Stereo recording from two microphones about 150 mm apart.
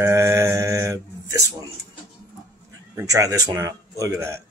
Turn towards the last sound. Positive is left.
turn(degrees=-20)  # may be behind; listen again after turning